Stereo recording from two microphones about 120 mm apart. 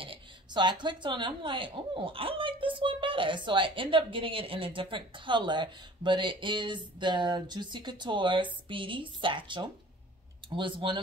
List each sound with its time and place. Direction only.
0.0 s speech: 45° right (ahead or behind)